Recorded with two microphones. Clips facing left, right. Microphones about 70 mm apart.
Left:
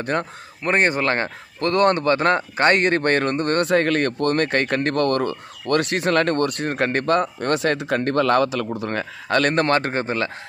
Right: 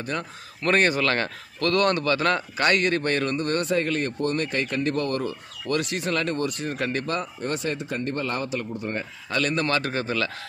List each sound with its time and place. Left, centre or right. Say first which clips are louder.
0.0 s speech: left 7 dB; left
0.6 s speech: left 2 dB; left
7.3 s speech: left 7 dB; left
9.3 s a man's voice: left 6 dB; left